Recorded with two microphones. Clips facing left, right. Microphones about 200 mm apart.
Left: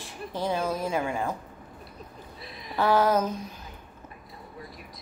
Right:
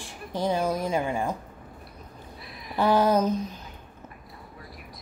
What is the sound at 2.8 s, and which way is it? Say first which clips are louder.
Speech: right 1 dB; 15° right (ahead or behind).